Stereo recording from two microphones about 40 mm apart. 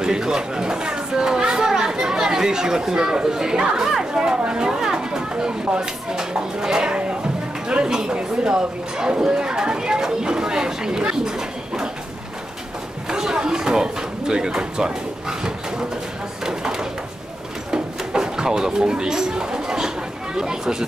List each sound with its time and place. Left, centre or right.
0.0 s a child's voice: centre
13.1 s a sound: centre
20.3 s speech: centre